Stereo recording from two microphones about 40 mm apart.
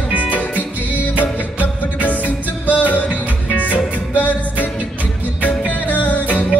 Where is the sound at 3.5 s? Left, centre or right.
Right.